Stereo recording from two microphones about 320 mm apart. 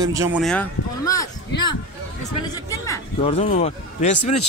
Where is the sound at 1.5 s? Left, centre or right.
Left.